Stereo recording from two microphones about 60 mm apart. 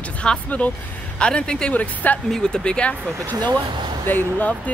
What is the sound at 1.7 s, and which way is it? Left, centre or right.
Speech, left.